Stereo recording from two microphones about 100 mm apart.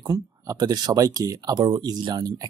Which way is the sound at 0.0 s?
40° right (ahead or behind).